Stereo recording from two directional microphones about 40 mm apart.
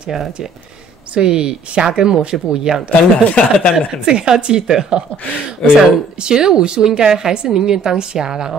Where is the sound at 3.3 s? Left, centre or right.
Left.